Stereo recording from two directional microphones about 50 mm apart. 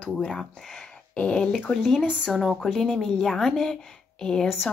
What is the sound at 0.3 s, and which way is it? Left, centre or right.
Speech, centre.